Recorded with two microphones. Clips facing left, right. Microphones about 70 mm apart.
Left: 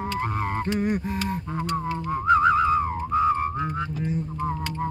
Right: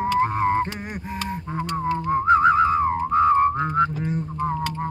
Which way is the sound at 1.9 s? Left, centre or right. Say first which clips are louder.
Right 3 dB; right.